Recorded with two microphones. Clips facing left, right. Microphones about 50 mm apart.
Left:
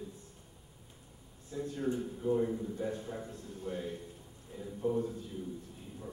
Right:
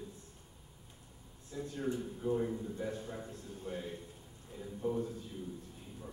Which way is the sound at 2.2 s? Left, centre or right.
Centre.